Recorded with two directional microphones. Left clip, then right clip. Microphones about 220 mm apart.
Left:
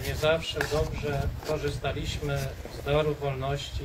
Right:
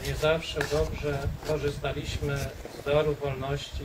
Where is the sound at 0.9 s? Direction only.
35° left (ahead or behind).